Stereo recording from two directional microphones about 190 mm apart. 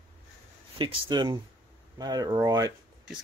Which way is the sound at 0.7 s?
25° right (ahead or behind).